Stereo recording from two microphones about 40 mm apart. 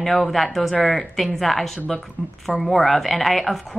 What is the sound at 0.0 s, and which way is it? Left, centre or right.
Speech, centre.